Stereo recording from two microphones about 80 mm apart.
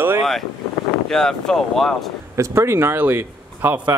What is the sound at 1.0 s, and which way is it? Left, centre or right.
Speech, centre.